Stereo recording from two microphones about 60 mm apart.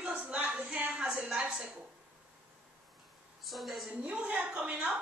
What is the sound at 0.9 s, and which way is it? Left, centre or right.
Speech, centre.